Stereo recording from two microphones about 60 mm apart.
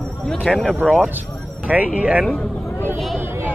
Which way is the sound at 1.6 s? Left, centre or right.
Right.